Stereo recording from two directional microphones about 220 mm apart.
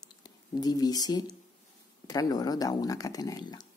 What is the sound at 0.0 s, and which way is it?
Speech, 15° left (ahead or behind).